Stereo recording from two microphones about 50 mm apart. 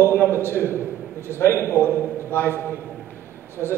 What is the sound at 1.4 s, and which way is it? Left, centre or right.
A man's voice, left.